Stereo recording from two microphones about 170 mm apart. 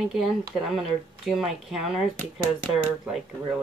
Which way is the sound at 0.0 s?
5° right (ahead or behind).